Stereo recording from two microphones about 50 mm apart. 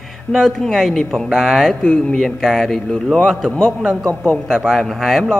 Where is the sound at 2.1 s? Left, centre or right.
Centre.